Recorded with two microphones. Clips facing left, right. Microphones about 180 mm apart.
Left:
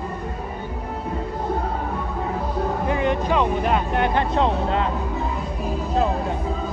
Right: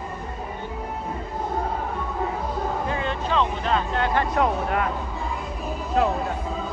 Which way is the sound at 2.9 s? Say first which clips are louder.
Left 5 dB; 15° left (ahead or behind).